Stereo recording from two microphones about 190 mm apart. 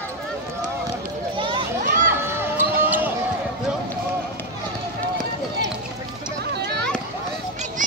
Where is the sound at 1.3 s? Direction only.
25° right (ahead or behind).